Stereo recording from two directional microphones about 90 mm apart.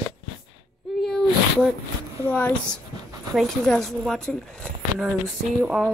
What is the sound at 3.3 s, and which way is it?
Speech, 5° left (ahead or behind).